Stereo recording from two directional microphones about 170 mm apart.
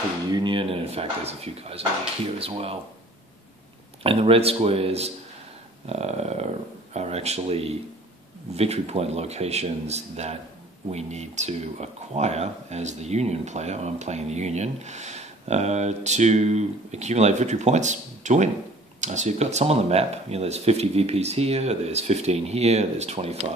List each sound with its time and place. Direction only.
0.3 s speech: 25° right (ahead or behind)
4.0 s speech: 35° right (ahead or behind)